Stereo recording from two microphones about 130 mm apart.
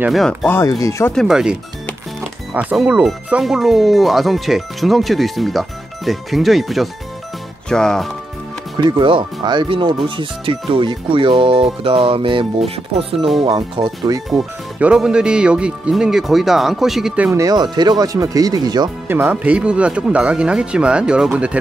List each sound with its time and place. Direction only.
0.1 s speech: centre (ahead or behind)
0.7 s speech: 25° left (ahead or behind)
1.1 s speech: 5° right (ahead or behind)
8.7 s speech: 35° right (ahead or behind)
13.5 s speech: 30° right (ahead or behind)
14.3 s speech: 5° right (ahead or behind)
17.3 s speech: 25° right (ahead or behind)
19.0 s speech: 15° right (ahead or behind)